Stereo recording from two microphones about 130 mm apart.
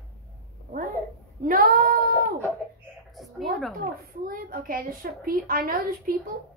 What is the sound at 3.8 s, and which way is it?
A child's voice, 90° right.